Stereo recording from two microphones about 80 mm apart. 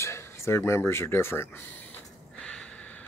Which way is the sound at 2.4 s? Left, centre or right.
Centre.